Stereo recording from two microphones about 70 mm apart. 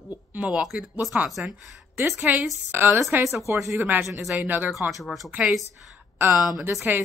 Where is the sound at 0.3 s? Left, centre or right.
Centre; by 3.8 s right.